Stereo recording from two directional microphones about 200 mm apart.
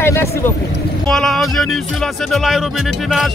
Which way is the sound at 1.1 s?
Centre (ahead or behind).